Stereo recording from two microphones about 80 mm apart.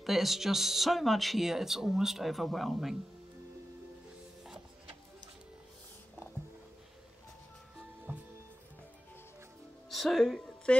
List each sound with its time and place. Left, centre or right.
0.0 s speech: centre
8.1 s music: right
9.8 s speech: centre
10.4 s a sound: centre